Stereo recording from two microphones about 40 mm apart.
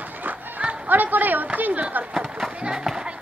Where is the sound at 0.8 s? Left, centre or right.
Right.